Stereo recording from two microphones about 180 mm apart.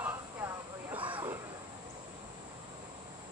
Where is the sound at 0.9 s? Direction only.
30° right (ahead or behind).